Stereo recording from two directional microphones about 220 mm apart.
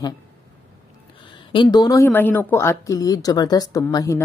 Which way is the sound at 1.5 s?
20° left (ahead or behind).